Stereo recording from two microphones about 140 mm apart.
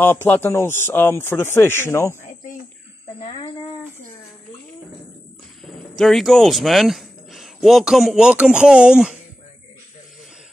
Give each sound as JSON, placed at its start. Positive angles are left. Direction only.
{"t": 0.0, "sound": "speech", "side_deg": 15}
{"t": 3.2, "sound": "speech", "side_deg": 45}
{"t": 5.6, "sound": "speech", "side_deg": 0}